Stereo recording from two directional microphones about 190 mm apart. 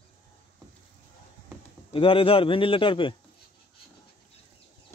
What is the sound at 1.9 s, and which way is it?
A man's voice, 30° left (ahead or behind).